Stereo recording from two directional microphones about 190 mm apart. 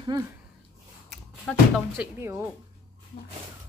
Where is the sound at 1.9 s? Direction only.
10° right (ahead or behind).